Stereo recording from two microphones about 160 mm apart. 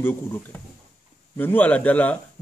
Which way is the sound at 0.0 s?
10° left (ahead or behind).